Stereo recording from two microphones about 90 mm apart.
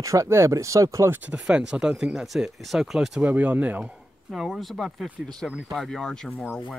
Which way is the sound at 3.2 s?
15° right (ahead or behind).